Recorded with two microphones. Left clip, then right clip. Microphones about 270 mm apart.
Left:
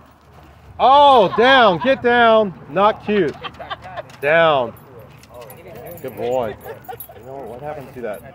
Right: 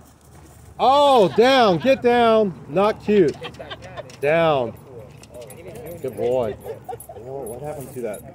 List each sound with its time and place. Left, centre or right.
0.7 s speech: centre
3.3 s a sound: left
4.3 s speech: centre
6.0 s speech: centre
6.5 s dog: left